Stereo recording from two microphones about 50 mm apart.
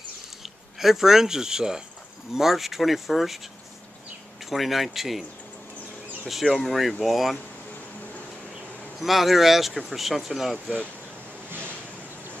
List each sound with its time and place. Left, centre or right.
0.4 s speech: centre
4.5 s speech: centre
6.2 s speech: centre
9.0 s speech: centre
10.5 s speech: centre